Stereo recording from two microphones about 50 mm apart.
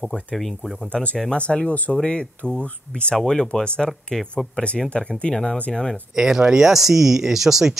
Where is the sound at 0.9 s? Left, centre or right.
Left.